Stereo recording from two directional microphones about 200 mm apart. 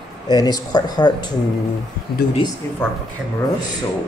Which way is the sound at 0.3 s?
20° left (ahead or behind).